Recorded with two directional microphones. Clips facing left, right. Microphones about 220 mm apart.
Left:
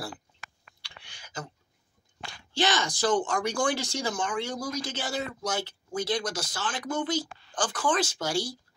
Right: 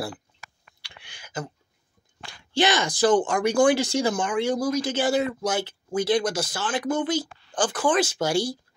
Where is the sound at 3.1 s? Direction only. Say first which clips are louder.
Right 6 dB; 55° right (ahead or behind).